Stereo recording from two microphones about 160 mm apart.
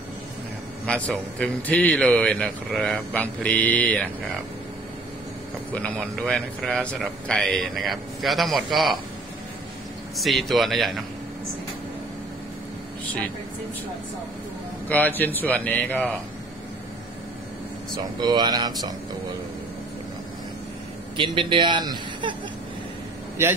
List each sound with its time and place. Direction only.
0.8 s speech: 10° left (ahead or behind)
5.7 s speech: 10° left (ahead or behind)
10.1 s speech: centre (ahead or behind)
14.9 s speech: 10° left (ahead or behind)
18.2 s a man's voice: 25° right (ahead or behind)
21.2 s a man's voice: 30° right (ahead or behind)